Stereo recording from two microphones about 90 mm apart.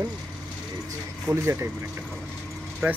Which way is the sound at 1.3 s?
35° right (ahead or behind).